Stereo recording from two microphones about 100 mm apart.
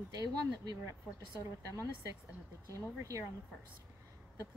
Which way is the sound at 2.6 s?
30° right (ahead or behind).